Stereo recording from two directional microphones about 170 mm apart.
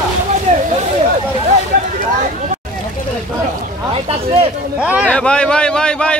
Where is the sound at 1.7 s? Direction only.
55° right (ahead or behind).